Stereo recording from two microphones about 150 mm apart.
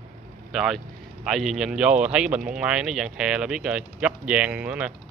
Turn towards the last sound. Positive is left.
turn(degrees=-10)  # may be behind; listen again after turning